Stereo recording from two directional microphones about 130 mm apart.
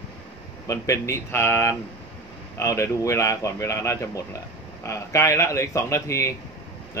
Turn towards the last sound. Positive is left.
turn(degrees=25)  # may be behind; listen again after turning